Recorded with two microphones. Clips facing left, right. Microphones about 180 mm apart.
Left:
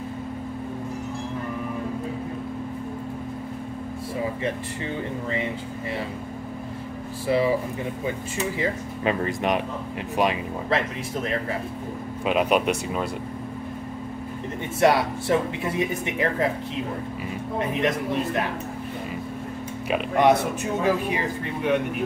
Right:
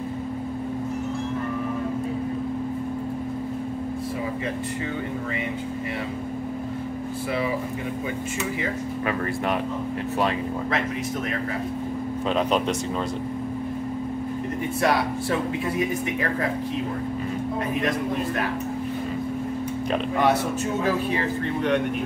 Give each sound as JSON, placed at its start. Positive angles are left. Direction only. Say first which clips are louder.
{"t": 9.0, "sound": "speech", "louder": "left 3 dB", "side_deg": 20}
{"t": 12.3, "sound": "speech", "louder": "left 2 dB", "side_deg": 10}
{"t": 14.8, "sound": "speech", "louder": "left 4 dB", "side_deg": 25}
{"t": 19.9, "sound": "speech", "louder": "left 3 dB", "side_deg": 20}